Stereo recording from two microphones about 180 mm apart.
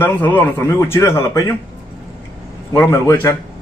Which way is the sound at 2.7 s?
15° left (ahead or behind).